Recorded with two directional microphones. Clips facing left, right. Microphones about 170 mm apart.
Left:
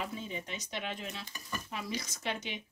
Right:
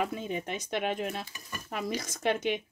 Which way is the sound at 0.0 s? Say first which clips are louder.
Right 7 dB; 55° right (ahead or behind).